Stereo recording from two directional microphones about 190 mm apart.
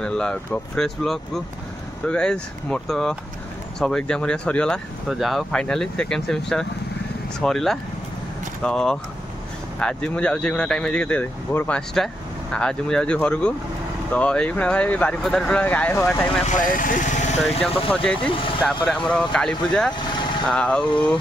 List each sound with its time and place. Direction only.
0.0 s speech: 5° left (ahead or behind)
16.4 s speech: 45° left (ahead or behind)
17.4 s speech: 5° left (ahead or behind)